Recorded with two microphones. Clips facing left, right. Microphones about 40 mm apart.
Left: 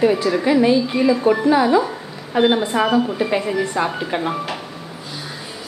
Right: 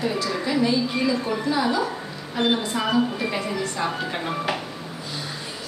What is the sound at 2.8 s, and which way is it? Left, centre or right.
A woman's voice, centre.